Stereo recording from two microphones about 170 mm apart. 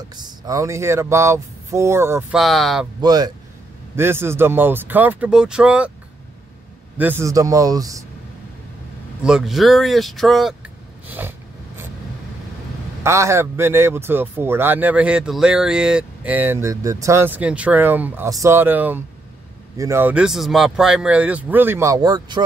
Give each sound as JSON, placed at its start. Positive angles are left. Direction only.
{"t": 0.1, "sound": "speech", "side_deg": -20}
{"t": 2.3, "sound": "speech", "side_deg": 0}
{"t": 3.0, "sound": "speech", "side_deg": -25}
{"t": 7.0, "sound": "a man's voice", "side_deg": -15}
{"t": 9.2, "sound": "speech", "side_deg": -5}
{"t": 11.1, "sound": "a sound", "side_deg": -10}
{"t": 13.0, "sound": "speech", "side_deg": -15}